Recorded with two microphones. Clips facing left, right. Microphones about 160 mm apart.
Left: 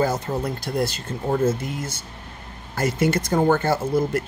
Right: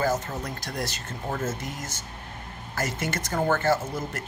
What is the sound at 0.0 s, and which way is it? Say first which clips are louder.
Speech: left 4 dB; 35° left (ahead or behind).